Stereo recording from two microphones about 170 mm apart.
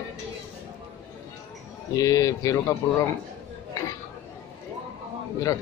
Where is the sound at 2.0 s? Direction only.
20° left (ahead or behind).